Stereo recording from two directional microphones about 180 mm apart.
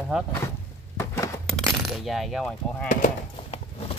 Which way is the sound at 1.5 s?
Centre (ahead or behind).